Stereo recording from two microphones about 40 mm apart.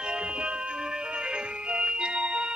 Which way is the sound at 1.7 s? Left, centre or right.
Right.